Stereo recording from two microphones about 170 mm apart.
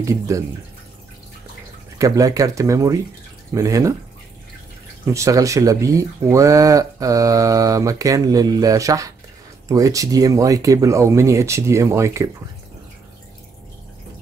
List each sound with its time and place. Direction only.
0.0 s speech: 20° right (ahead or behind)
2.0 s speech: 20° right (ahead or behind)
5.0 s speech: 20° right (ahead or behind)